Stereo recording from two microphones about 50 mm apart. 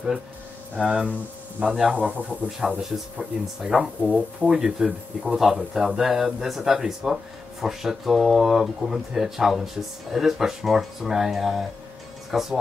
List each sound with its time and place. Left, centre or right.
0.8 s speech: right
1.6 s speech: centre
1.9 s speech: right
2.8 s speech: centre
4.6 s speech: centre